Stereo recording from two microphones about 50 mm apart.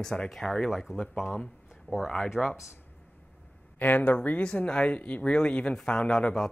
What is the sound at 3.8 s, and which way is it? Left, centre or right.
Speech, left.